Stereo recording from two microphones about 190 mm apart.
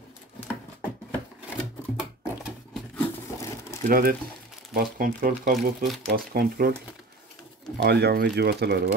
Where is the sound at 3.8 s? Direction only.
50° right (ahead or behind).